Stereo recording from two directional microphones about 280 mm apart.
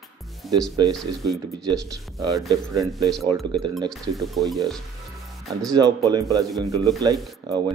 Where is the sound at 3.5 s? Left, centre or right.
Centre.